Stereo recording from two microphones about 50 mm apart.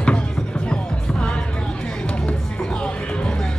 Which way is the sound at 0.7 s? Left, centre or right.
Centre.